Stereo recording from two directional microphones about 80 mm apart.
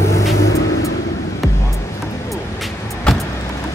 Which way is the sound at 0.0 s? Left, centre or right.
Left.